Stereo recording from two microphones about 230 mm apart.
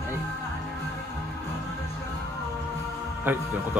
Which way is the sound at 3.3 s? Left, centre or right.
Centre.